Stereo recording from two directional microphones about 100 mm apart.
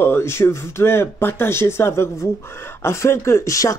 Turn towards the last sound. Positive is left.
turn(degrees=30)  # may be behind; listen again after turning